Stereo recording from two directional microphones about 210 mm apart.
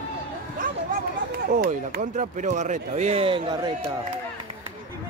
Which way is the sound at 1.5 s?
40° right (ahead or behind).